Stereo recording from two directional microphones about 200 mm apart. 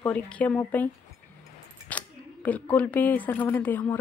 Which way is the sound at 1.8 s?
5° left (ahead or behind).